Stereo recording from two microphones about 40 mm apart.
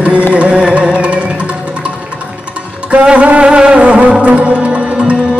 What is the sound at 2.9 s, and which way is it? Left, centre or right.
Music, right.